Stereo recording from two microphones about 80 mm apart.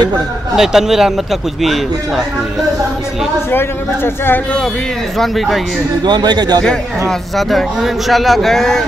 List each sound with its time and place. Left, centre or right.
0.6 s speech: centre
3.5 s speech: left
5.1 s speech: centre
6.0 s speech: right
7.1 s speech: centre